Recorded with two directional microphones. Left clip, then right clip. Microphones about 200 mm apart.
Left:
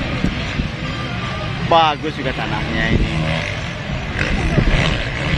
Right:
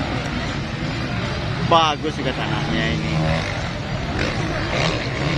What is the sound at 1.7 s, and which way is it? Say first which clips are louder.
Vehicle: left 3 dB; 40° left (ahead or behind).